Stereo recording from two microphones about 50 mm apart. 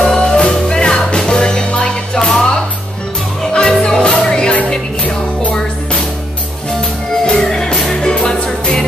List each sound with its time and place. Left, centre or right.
0.0 s music: centre
3.5 s music: centre
7.2 s music: centre